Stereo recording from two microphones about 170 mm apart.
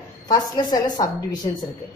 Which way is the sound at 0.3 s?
25° left (ahead or behind).